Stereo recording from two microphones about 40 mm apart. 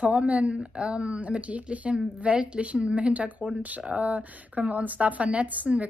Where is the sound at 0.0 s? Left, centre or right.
Right.